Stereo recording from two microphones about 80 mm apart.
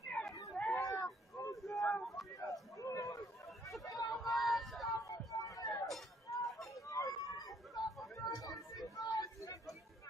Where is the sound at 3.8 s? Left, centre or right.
Left.